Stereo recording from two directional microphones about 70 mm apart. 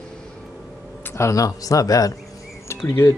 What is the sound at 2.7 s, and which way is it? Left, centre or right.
Insect, left.